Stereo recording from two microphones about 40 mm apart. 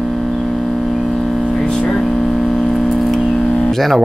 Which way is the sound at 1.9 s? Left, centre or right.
Centre.